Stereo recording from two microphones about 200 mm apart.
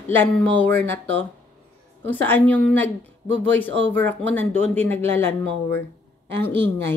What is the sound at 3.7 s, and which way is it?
Speech, 65° right (ahead or behind).